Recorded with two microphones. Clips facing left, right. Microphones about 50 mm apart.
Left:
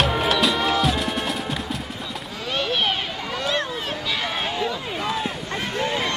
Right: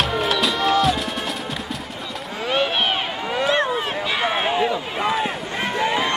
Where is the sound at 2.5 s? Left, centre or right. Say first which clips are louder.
Right 2 dB; right.